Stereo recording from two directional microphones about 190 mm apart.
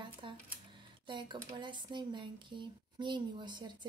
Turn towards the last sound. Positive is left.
turn(degrees=-25)  # may be behind; listen again after turning